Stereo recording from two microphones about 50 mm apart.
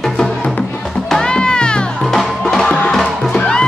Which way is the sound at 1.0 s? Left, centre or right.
Centre.